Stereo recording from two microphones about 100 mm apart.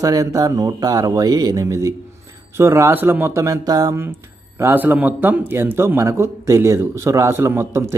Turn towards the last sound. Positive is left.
turn(degrees=-25)  # may be behind; listen again after turning